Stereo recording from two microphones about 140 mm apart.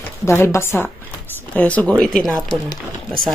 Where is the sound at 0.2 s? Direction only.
20° left (ahead or behind); by 2.6 s 5° left (ahead or behind).